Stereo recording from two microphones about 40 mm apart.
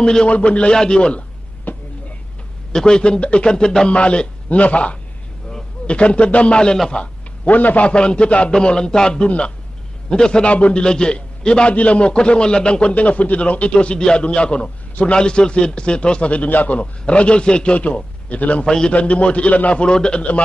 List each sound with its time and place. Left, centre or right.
0.0 s a man's voice: left
0.3 s a man's voice: left
1.6 s a sound: left
2.7 s a man's voice: centre
7.4 s a man's voice: left
7.9 s a man's voice: left
8.5 s a man's voice: centre
10.5 s a man's voice: left
10.8 s a man's voice: left
12.9 s a man's voice: left
16.4 s a man's voice: left
19.7 s a man's voice: left